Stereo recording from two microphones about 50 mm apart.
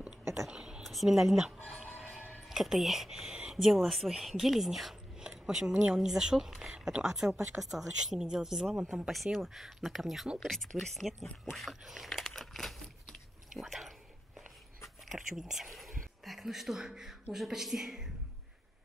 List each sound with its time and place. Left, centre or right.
0.5 s a sound: centre
0.8 s speech: centre
2.5 s a woman's voice: centre
5.2 s cutlery: centre
5.9 s a woman's voice: centre
10.5 s speech: centre
11.5 s crumpling: centre
13.6 s speech: centre
15.1 s speech: centre